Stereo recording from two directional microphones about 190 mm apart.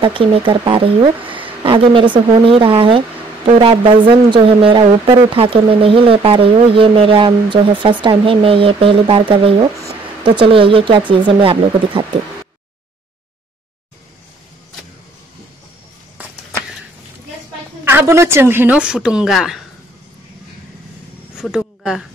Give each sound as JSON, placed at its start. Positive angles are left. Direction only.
{"t": 0.0, "sound": "speech", "side_deg": -30}
{"t": 17.8, "sound": "a woman's voice", "side_deg": -10}
{"t": 21.4, "sound": "speech", "side_deg": -5}